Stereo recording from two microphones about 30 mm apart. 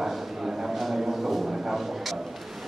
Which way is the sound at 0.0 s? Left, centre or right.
Centre.